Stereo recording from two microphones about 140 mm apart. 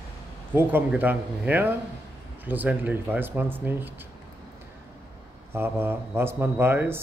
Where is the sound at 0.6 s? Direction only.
15° right (ahead or behind).